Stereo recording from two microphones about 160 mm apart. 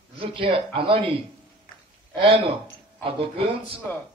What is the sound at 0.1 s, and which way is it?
Speech, 35° right (ahead or behind).